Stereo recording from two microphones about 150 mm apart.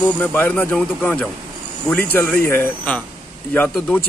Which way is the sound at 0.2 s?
10° left (ahead or behind).